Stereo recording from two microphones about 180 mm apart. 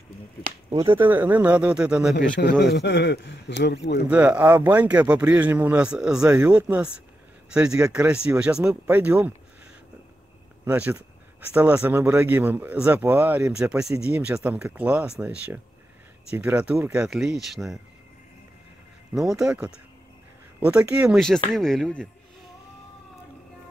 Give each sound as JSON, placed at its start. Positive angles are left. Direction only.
{"t": 0.8, "sound": "speech", "side_deg": -10}
{"t": 2.6, "sound": "a man's voice", "side_deg": 70}
{"t": 4.1, "sound": "speech", "side_deg": -10}
{"t": 10.6, "sound": "speech", "side_deg": -10}
{"t": 19.1, "sound": "speech", "side_deg": 0}